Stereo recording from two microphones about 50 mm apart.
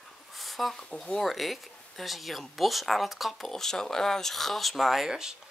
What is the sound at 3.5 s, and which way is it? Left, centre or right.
Speech, centre.